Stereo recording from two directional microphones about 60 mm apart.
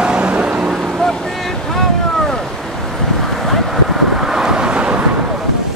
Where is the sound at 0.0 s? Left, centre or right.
Centre.